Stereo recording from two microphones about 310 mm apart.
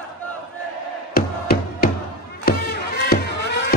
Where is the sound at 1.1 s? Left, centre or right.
Left.